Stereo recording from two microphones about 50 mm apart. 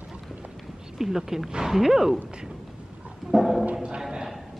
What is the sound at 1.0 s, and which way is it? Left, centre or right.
Speech, centre.